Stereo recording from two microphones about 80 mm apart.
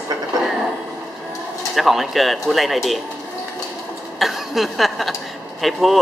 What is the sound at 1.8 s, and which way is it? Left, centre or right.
Speech, centre.